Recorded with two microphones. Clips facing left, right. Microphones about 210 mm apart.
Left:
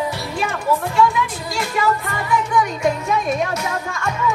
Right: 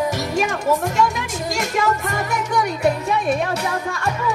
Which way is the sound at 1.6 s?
45° right (ahead or behind).